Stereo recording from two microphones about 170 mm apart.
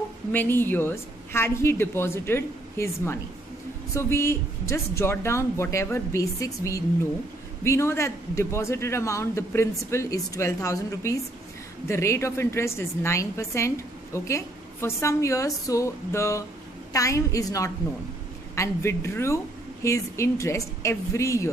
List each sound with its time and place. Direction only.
0.3 s a woman's voice: 10° left (ahead or behind)